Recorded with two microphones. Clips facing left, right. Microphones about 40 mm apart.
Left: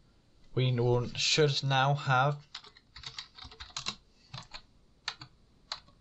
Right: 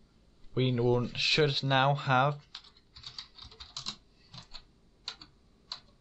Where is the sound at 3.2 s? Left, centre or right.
Left.